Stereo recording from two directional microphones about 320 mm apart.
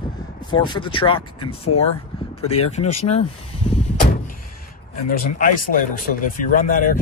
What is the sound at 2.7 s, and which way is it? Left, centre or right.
Speech, centre.